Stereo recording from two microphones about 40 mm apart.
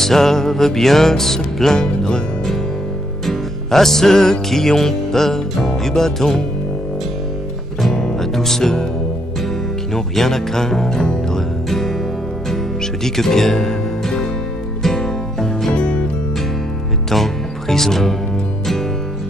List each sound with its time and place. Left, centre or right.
0.0 s music: centre
7.9 s music: centre
9.9 s music: centre
13.0 s speech: centre
14.8 s music: centre
15.7 s music: left
17.1 s speech: centre